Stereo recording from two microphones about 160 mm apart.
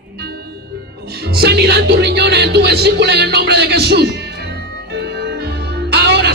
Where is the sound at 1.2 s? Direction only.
85° right.